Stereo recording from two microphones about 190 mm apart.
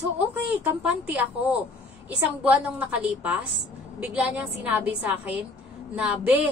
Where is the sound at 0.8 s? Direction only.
10° right (ahead or behind).